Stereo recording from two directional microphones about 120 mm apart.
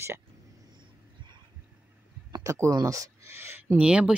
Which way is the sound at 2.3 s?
25° right (ahead or behind).